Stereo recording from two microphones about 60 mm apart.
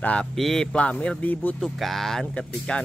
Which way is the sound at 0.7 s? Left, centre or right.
Centre.